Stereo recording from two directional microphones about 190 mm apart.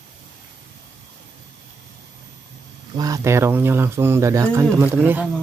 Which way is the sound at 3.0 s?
20° right (ahead or behind).